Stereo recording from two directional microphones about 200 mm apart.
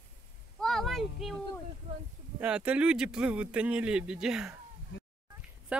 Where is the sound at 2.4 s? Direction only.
5° right (ahead or behind).